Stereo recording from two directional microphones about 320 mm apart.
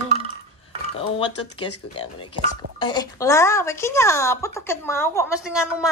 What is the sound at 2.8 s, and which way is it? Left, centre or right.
A woman's voice, centre.